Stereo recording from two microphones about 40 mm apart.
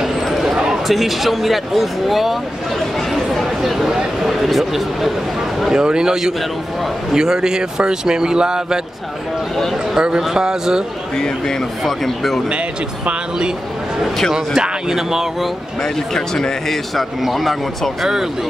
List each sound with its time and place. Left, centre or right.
0.0 s a sound: centre
0.8 s a man's voice: centre
3.3 s a sound: centre
4.3 s a man's voice: centre
9.9 s speech: centre
11.8 s a man's voice: centre
14.3 s speech: centre
16.3 s a man's voice: centre